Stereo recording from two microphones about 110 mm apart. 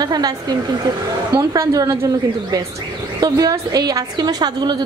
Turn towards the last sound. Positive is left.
turn(degrees=-40)  # may be behind; listen again after turning